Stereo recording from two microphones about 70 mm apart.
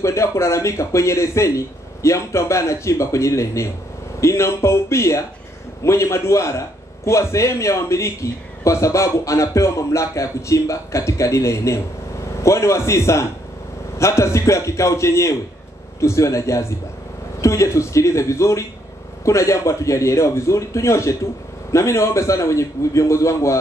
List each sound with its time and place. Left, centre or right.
0.0 s a man's voice: left